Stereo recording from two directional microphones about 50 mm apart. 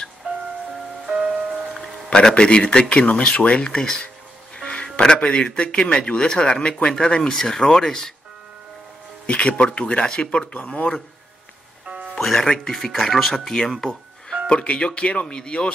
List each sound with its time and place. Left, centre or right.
1.0 s music: centre
2.1 s speech: centre
9.2 s speech: left
12.2 s speech: centre
13.3 s speech: centre
14.5 s speech: left